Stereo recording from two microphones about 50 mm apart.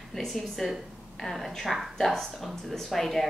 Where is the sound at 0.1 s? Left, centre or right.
Centre.